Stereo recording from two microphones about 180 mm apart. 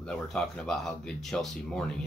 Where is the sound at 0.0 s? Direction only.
5° left (ahead or behind).